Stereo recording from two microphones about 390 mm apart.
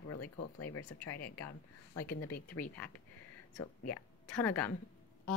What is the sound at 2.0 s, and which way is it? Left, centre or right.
Speech, left.